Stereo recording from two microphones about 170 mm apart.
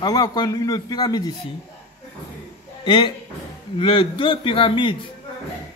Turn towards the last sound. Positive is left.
turn(degrees=30)  # may be behind; listen again after turning